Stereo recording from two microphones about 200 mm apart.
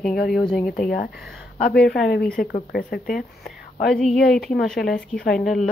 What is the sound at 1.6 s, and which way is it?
A woman's voice, 55° left (ahead or behind).